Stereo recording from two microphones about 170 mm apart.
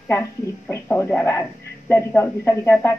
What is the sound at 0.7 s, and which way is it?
Speech, 15° left (ahead or behind).